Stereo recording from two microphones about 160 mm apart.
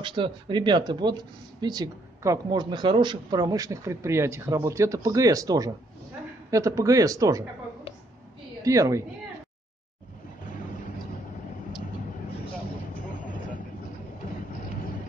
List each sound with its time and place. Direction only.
0.0 s speech: 30° right (ahead or behind)
8.6 s speech: 20° right (ahead or behind)